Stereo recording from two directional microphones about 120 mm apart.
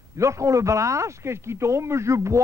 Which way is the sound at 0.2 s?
25° right (ahead or behind).